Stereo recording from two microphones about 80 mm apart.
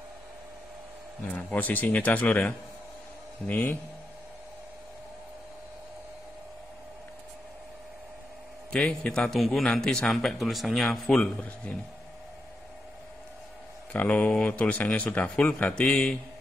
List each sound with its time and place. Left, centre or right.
1.3 s speech: centre
8.7 s a man's voice: centre
13.9 s a man's voice: centre